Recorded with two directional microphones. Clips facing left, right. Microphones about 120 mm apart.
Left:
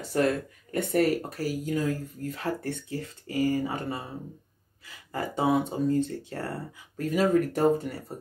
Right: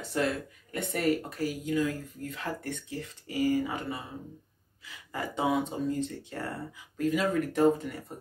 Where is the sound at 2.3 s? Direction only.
35° left (ahead or behind).